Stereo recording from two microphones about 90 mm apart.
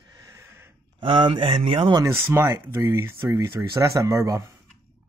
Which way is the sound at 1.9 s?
35° right (ahead or behind).